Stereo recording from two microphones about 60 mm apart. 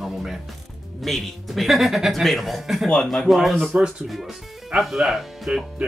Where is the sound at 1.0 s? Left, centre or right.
Centre.